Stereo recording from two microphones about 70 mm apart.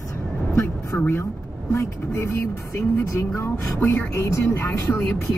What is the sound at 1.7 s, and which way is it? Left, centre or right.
Speech, left.